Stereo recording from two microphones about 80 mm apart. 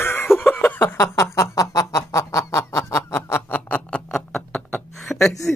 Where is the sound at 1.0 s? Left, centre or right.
Left.